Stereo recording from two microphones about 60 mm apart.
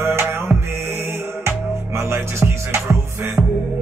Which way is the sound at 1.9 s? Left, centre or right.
Right.